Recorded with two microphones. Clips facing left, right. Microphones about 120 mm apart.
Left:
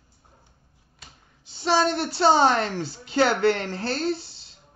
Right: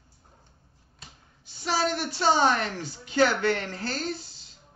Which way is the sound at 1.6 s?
30° left (ahead or behind).